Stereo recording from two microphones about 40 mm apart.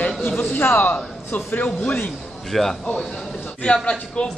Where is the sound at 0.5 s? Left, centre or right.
Left.